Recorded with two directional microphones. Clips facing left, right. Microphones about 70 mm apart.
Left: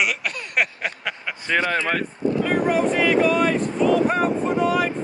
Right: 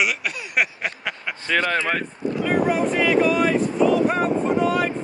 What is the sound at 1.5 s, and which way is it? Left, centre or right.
Speech, centre.